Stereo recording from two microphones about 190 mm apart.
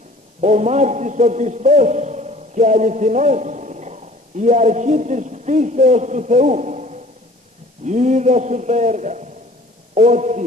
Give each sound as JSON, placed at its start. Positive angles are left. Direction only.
{"t": 0.4, "sound": "a man's voice", "side_deg": -40}